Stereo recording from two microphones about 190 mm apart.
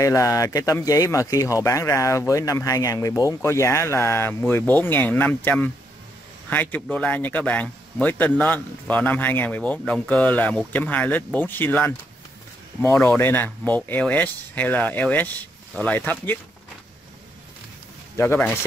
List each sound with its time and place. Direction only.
0.0 s speech: 15° left (ahead or behind)
18.1 s speech: 10° left (ahead or behind)